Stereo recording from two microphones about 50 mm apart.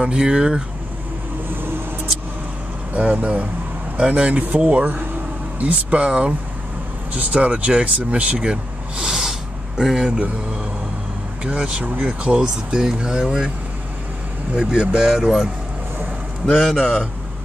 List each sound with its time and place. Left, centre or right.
0.0 s speech: centre
2.9 s speech: right; by 10.1 s centre
11.4 s speech: right
14.5 s speech: centre
16.4 s a man's voice: centre